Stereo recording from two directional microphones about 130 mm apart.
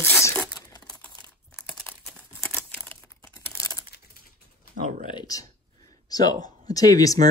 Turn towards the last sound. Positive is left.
turn(degrees=25)  # may be behind; listen again after turning